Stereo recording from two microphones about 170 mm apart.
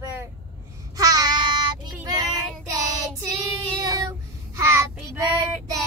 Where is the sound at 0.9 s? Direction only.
20° right (ahead or behind).